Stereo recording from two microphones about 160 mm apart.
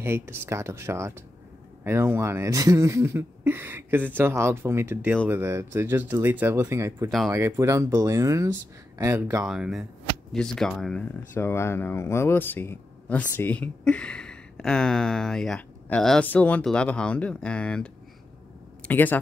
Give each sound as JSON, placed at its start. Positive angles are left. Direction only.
{"t": 0.0, "sound": "speech", "side_deg": -15}
{"t": 9.5, "sound": "speech", "side_deg": 0}
{"t": 18.9, "sound": "speech", "side_deg": 10}